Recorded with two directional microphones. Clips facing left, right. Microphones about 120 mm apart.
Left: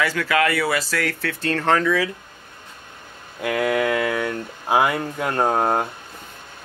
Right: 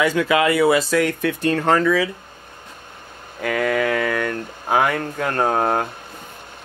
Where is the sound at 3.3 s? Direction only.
5° left (ahead or behind).